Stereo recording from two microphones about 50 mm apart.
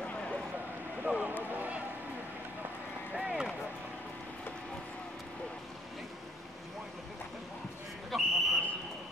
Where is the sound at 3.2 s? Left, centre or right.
Centre.